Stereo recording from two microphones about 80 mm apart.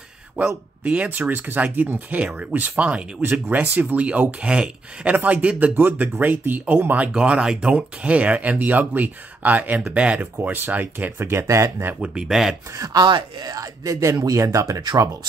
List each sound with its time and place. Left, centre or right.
0.8 s speech: centre
7.1 s speech: centre; by 11.7 s right
12.0 s speech: centre
12.7 s speech: right
13.6 s speech: right